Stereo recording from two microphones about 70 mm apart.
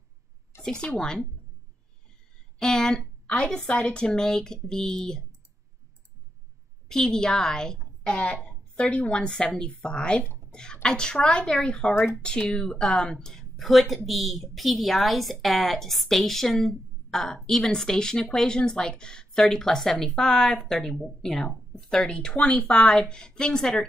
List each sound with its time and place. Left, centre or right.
0.6 s speech: centre
2.6 s speech: centre
6.9 s a woman's voice: centre